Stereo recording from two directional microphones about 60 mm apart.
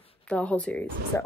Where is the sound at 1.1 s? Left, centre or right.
Left.